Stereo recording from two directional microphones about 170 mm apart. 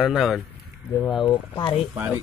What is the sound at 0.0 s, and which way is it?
Speech, centre (ahead or behind).